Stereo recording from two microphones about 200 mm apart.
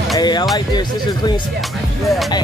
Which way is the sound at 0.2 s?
20° left (ahead or behind).